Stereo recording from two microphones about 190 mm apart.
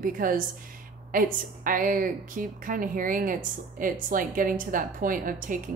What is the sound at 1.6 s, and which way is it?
Speech, 45° right (ahead or behind).